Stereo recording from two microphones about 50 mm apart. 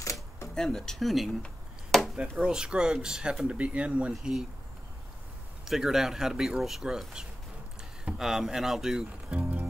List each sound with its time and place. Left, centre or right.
0.6 s speech: centre
1.0 s speech: centre
1.9 s chop: centre
2.3 s speech: centre
3.4 s speech: right
4.2 s speech: centre
5.7 s speech: centre
9.3 s music: right